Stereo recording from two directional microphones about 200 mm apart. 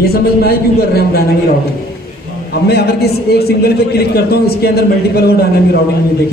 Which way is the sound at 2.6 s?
50° left (ahead or behind).